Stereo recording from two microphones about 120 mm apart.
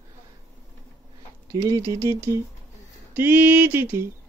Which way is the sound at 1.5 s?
30° right (ahead or behind).